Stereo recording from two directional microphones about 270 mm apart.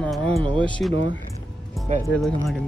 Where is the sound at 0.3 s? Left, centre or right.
Centre.